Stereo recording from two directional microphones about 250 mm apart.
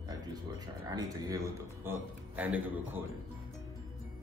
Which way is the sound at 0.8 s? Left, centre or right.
Centre.